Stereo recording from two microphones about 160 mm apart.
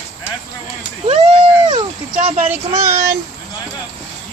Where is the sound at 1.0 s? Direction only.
40° right (ahead or behind).